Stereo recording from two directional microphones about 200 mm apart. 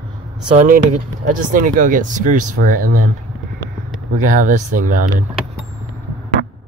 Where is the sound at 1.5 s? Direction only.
40° right (ahead or behind).